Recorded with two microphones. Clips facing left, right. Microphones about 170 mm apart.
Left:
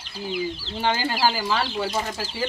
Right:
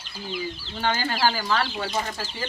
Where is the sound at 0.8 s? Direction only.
15° left (ahead or behind).